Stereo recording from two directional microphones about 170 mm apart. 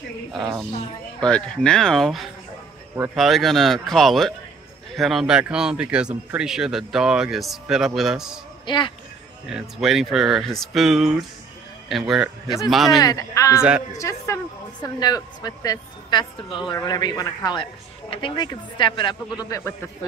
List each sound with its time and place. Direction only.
1.2 s speech: 5° left (ahead or behind)
8.6 s speech: 25° left (ahead or behind)
9.5 s speech: 5° right (ahead or behind)
13.0 s a woman's voice: 20° left (ahead or behind)
13.6 s speech: 5° right (ahead or behind)
13.9 s a woman's voice: 15° left (ahead or behind)